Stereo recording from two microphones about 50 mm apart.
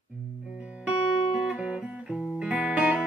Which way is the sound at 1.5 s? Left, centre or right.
Right.